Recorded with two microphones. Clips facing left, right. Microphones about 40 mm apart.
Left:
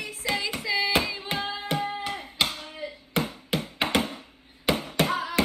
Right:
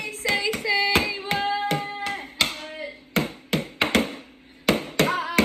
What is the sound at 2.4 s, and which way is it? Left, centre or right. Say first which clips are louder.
Music: right 2 dB; right.